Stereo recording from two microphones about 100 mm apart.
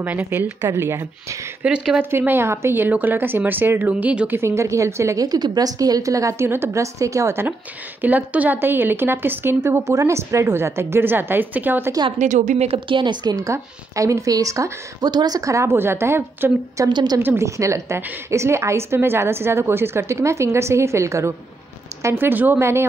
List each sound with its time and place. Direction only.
0.0 s a woman's voice: 20° right (ahead or behind)
1.6 s speech: 10° right (ahead or behind)
2.0 s a woman's voice: 25° right (ahead or behind)
3.9 s speech: 10° right (ahead or behind)
4.4 s a woman's voice: 30° right (ahead or behind)
12.5 s a woman's voice: 80° right; by 13.5 s 45° right (ahead or behind)
13.5 s a woman's voice: 30° right (ahead or behind)
16.8 s a woman's voice: 45° right (ahead or behind)
17.2 s a woman's voice: 25° right (ahead or behind)